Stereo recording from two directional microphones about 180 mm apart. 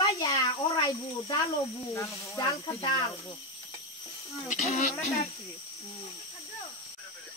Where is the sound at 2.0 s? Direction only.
15° left (ahead or behind).